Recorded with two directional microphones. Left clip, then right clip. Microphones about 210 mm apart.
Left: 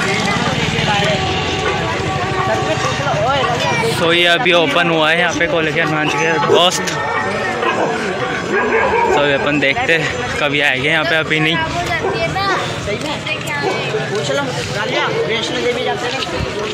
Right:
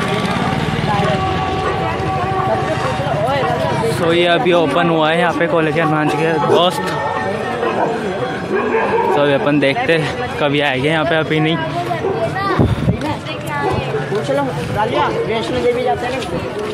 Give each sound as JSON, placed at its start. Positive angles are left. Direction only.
{"t": 4.1, "sound": "speech", "side_deg": 0}
{"t": 5.2, "sound": "speech", "side_deg": -25}
{"t": 9.1, "sound": "speech", "side_deg": -20}